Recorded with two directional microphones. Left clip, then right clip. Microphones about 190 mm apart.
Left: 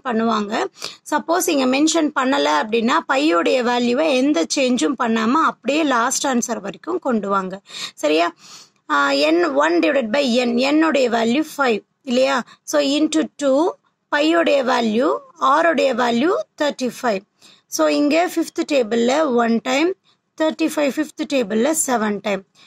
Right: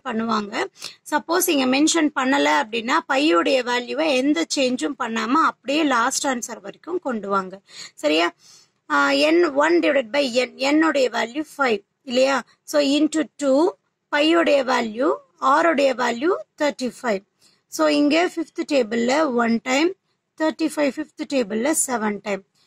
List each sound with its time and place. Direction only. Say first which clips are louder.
0.0 s speech: left 4 dB; 25° left (ahead or behind)